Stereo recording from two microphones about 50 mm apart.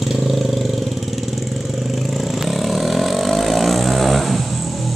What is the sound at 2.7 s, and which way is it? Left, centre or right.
Vehicle, centre.